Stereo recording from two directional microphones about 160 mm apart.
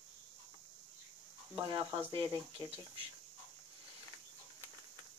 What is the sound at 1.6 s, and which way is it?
Speech, 30° right (ahead or behind).